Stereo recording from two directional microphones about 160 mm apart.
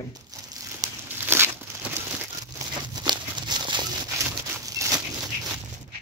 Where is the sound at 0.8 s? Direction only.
15° right (ahead or behind).